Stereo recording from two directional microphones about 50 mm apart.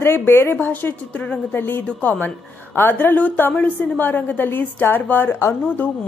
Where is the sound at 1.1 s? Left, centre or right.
Left.